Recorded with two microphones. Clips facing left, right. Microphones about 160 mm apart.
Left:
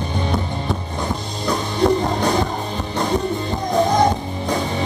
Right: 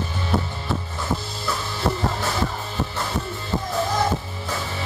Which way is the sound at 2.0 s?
20° left (ahead or behind).